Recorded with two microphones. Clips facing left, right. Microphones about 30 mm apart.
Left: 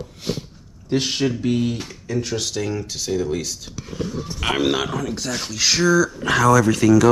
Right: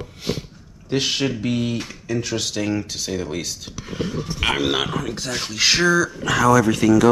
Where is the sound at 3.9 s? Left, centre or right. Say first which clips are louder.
Right 1 dB; right.